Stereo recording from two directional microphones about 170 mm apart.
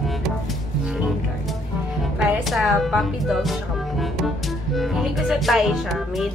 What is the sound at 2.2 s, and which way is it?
Speech, centre (ahead or behind).